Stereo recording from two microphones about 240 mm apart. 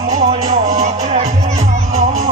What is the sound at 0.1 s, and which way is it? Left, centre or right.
Music, right.